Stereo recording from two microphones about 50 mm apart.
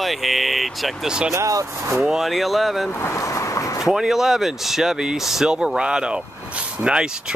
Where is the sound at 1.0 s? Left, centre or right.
Centre.